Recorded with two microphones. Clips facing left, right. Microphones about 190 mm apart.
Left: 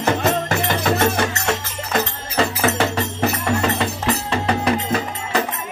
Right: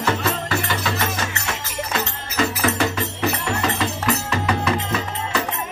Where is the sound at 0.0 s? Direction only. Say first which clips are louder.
Left 4 dB; 45° left (ahead or behind).